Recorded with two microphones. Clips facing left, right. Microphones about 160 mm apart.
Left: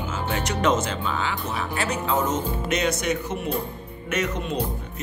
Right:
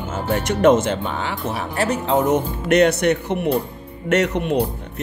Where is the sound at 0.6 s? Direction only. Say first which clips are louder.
Right 9 dB; 55° right (ahead or behind).